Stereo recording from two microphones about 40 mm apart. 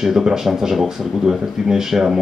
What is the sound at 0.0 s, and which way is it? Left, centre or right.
Speech, centre.